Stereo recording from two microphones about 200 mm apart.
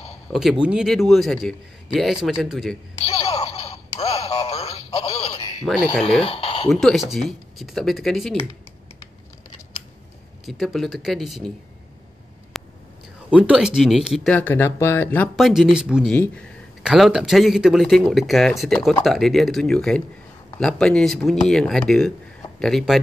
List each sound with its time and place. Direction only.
0.3 s a man's voice: centre (ahead or behind)
3.0 s a sound: 30° left (ahead or behind)
6.2 s speech: 30° left (ahead or behind)
6.7 s a man's voice: centre (ahead or behind)
10.4 s a man's voice: centre (ahead or behind)
12.6 s whispering: centre (ahead or behind)
13.3 s a man's voice: 5° right (ahead or behind); by 15.2 s 10° left (ahead or behind)
15.3 s a man's voice: centre (ahead or behind)